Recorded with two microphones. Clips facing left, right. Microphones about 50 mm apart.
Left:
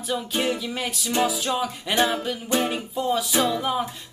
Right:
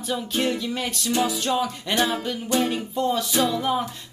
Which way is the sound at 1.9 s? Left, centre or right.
Centre.